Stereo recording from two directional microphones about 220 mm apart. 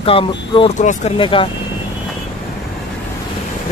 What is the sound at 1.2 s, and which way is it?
Speech, 25° left (ahead or behind).